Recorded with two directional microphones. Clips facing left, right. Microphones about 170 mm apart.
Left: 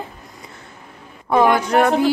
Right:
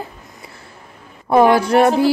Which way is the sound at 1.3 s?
35° right (ahead or behind).